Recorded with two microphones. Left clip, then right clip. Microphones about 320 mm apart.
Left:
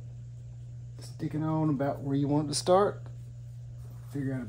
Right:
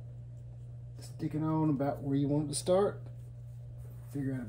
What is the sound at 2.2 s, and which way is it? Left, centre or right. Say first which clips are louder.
Speech: left 4 dB; centre.